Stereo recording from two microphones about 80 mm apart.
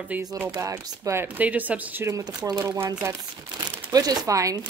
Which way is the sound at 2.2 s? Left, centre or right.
Right.